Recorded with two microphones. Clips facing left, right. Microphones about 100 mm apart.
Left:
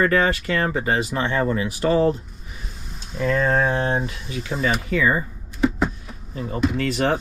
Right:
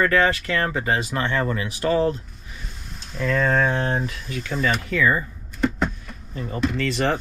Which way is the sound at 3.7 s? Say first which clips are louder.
Left 2 dB; 25° left (ahead or behind).